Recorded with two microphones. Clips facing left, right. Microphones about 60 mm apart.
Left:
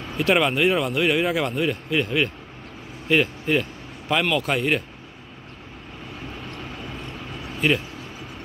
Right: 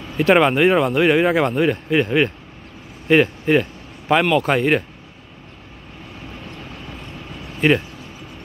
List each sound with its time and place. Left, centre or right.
0.2 s speech: right
7.6 s speech: right